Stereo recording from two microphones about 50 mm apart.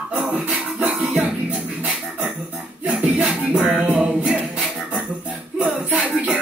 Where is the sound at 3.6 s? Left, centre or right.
Centre.